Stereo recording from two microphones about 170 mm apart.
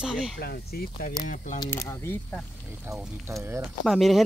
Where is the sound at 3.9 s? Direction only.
Centre (ahead or behind).